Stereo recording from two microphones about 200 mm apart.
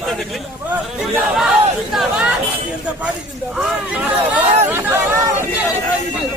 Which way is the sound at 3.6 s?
5° right (ahead or behind).